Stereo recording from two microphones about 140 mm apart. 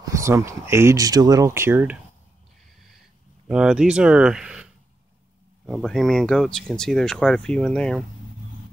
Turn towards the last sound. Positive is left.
turn(degrees=5)  # may be behind; listen again after turning